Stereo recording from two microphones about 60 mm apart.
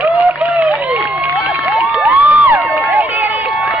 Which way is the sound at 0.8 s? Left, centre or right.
Right.